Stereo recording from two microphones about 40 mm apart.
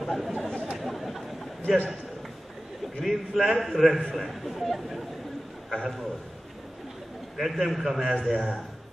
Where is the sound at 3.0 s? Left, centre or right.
Centre.